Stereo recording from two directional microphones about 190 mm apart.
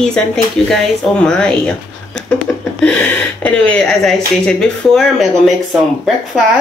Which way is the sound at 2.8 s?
5° left (ahead or behind).